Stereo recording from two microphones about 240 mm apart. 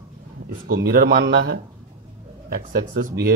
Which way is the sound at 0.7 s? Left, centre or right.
Right.